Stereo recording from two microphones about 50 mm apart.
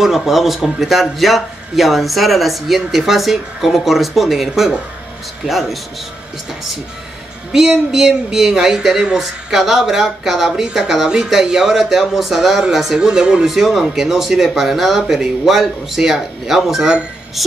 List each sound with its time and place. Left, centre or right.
0.0 s a man's voice: centre
7.5 s a man's voice: centre
10.8 s a man's voice: centre
13.5 s a man's voice: centre